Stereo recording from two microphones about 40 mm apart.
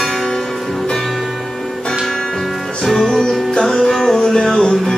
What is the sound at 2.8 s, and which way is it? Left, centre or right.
Music, centre.